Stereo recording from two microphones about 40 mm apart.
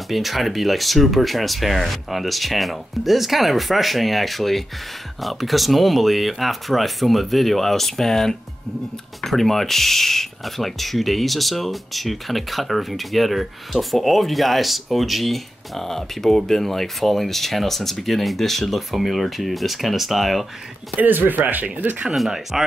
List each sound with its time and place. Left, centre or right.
0.1 s speech: centre
20.9 s speech: right
22.1 s speech: centre